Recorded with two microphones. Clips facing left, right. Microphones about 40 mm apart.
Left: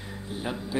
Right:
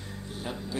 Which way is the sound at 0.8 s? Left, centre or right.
Centre.